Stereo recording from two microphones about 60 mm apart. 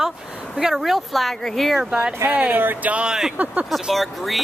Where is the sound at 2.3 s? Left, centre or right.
Right.